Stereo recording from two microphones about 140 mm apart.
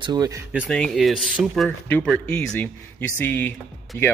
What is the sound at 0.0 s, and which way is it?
Speech, 30° right (ahead or behind).